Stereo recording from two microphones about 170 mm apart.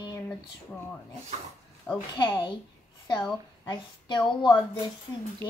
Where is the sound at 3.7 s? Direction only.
25° left (ahead or behind).